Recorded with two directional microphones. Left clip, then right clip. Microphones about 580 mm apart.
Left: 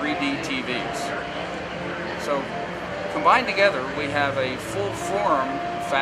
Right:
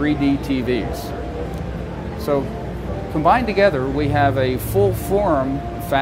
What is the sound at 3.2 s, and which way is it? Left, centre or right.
Speech, centre.